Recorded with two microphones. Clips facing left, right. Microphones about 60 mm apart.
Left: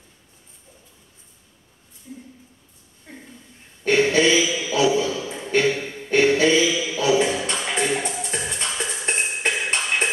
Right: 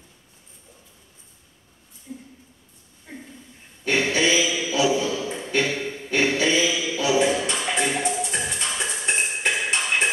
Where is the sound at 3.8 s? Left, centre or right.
Left.